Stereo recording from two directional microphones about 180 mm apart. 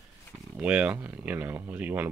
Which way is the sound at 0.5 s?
5° right (ahead or behind).